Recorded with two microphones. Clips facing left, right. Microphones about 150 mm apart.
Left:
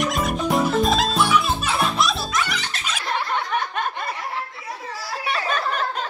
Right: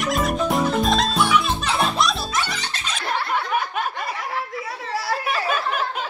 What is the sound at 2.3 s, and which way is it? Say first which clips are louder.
Music: left 1 dB; 30° right (ahead or behind).